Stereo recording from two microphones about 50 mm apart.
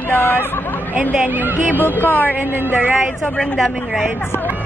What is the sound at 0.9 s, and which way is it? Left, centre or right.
Speech, right.